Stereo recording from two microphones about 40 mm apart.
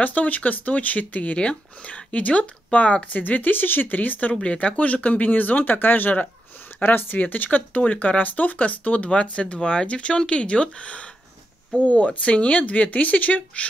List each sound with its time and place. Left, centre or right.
0.0 s speech: left
3.2 s speech: left
4.3 s speech: left
7.2 s speech: left